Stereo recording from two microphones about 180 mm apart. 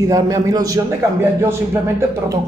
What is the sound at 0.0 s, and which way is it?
A man's voice, 20° right (ahead or behind).